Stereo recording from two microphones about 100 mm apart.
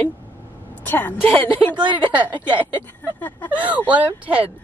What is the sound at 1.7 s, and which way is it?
Speech, 55° right (ahead or behind).